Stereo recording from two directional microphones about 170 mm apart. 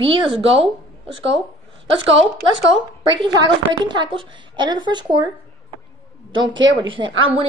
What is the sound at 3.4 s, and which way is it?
A woman's voice, 25° right (ahead or behind).